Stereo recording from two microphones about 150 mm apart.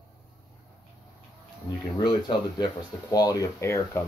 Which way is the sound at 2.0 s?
30° left (ahead or behind).